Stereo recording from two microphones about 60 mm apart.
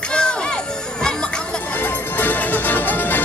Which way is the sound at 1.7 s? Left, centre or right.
Left.